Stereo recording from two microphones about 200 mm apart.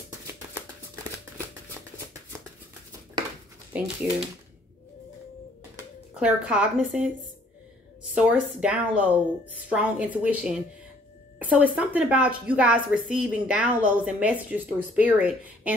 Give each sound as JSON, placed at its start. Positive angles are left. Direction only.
{"t": 3.7, "sound": "a woman's voice", "side_deg": -5}
{"t": 6.1, "sound": "a woman's voice", "side_deg": -5}
{"t": 8.1, "sound": "a woman's voice", "side_deg": -5}